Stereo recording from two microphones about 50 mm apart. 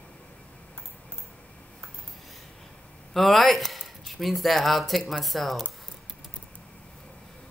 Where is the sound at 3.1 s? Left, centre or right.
Centre.